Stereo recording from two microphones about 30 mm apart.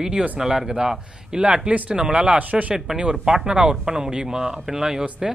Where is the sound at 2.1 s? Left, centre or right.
Right.